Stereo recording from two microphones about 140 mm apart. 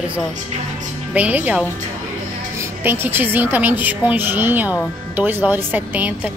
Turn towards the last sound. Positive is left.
turn(degrees=-10)  # may be behind; listen again after turning